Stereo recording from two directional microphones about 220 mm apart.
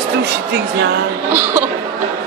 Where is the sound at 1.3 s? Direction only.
10° right (ahead or behind).